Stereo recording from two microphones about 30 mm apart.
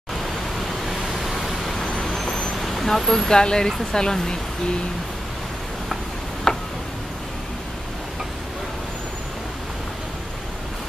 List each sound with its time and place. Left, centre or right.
0.8 s vehicle: centre
3.3 s speech: left
6.5 s tick: left